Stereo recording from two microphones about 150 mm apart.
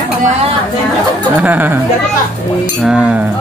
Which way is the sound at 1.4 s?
10° right (ahead or behind).